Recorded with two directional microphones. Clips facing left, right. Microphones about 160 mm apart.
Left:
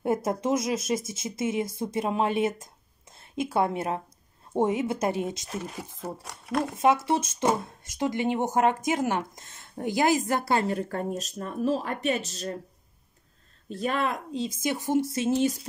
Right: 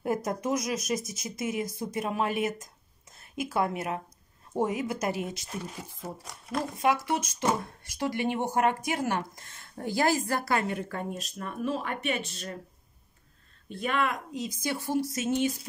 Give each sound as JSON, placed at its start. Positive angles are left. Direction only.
{"t": 0.0, "sound": "speech", "side_deg": 25}
{"t": 5.9, "sound": "speech", "side_deg": 65}
{"t": 6.8, "sound": "speech", "side_deg": 25}
{"t": 13.7, "sound": "speech", "side_deg": 40}